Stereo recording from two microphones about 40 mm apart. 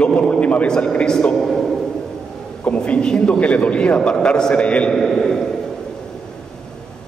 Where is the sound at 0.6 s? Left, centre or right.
Centre.